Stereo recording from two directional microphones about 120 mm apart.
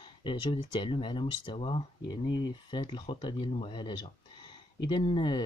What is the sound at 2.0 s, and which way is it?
Speech, 35° left (ahead or behind).